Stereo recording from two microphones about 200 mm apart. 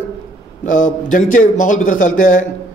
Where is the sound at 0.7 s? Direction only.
40° left (ahead or behind).